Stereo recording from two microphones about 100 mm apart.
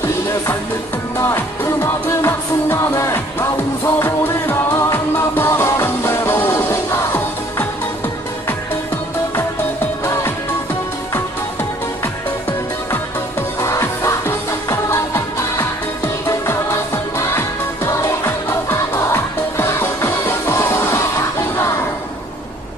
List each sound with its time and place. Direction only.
1.2 s music: 25° left (ahead or behind)
13.6 s music: 30° left (ahead or behind)